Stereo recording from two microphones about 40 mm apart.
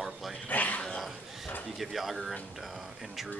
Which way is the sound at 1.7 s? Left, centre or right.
Centre.